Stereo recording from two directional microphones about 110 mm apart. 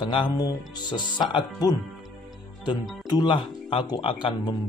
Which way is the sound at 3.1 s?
45° left (ahead or behind).